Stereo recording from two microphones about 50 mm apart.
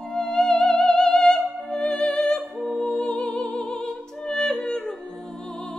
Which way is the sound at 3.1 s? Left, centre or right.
Left.